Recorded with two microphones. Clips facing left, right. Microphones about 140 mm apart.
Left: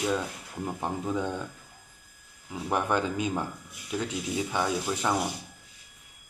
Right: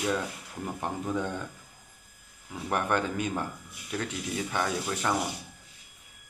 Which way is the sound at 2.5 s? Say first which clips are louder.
Left 1 dB; 10° left (ahead or behind).